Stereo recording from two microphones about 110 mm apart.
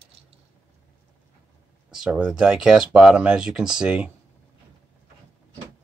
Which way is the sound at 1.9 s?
5° right (ahead or behind).